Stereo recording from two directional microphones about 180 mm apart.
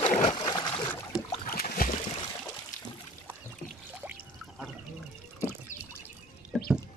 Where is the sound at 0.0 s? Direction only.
35° left (ahead or behind).